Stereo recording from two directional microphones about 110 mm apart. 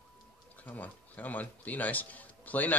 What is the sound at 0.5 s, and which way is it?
A man's voice, 15° left (ahead or behind).